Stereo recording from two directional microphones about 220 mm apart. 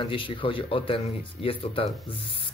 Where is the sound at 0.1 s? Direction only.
25° left (ahead or behind).